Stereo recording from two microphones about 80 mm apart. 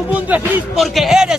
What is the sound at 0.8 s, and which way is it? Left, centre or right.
Music, centre.